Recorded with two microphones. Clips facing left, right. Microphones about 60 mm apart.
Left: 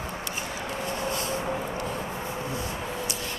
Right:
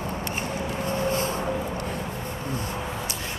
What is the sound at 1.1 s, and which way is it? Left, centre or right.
Vehicle, right.